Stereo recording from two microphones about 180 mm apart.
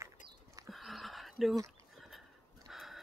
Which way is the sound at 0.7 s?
Centre (ahead or behind).